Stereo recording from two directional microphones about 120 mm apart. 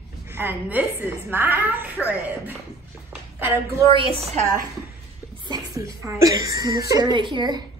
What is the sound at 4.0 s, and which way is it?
Speech, 55° right (ahead or behind).